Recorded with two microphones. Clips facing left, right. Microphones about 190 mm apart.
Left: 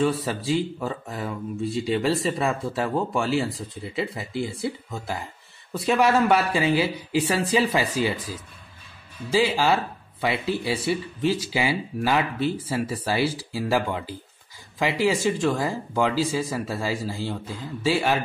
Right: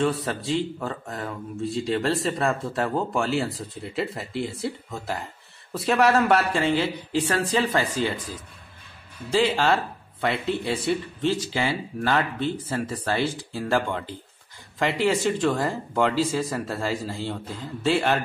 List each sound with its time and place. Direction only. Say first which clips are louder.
0.0 s speech: left 1 dB; centre (ahead or behind)
9.3 s speech: even; 5° left (ahead or behind)